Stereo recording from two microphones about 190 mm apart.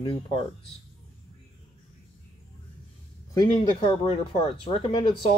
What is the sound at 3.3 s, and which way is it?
Speech, 20° left (ahead or behind).